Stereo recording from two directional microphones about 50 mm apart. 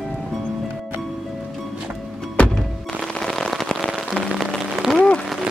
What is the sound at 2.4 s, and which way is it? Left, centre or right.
Thunk, centre.